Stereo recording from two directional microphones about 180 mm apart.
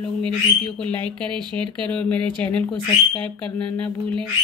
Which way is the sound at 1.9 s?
5° left (ahead or behind).